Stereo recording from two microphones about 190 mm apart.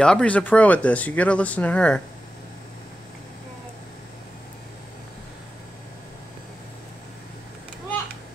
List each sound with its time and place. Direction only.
0.0 s speech: 5° left (ahead or behind)